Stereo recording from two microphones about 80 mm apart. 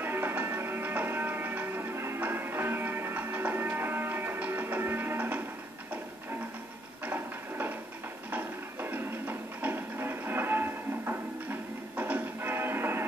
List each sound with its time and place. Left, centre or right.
0.0 s music: right
7.1 s a sound: right
12.0 s music: right